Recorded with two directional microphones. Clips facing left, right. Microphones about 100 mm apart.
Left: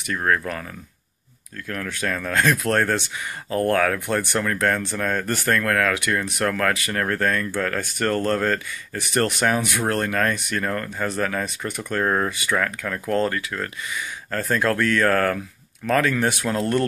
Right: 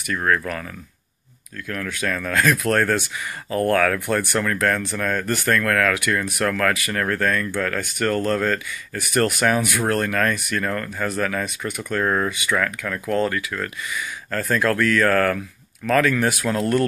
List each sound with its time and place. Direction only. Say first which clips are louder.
0.0 s speech: right 1 dB; 25° left (ahead or behind)
1.7 s speech: right 1 dB; 30° left (ahead or behind)